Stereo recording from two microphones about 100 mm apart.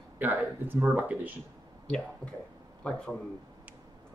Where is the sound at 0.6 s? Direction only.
20° right (ahead or behind).